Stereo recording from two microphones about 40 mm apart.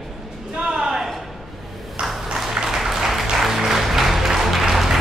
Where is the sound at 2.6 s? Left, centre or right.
Centre.